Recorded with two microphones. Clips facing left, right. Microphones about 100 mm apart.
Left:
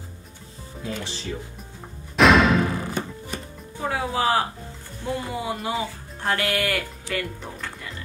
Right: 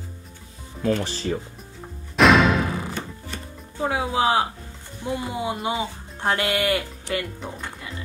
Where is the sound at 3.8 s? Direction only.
20° right (ahead or behind).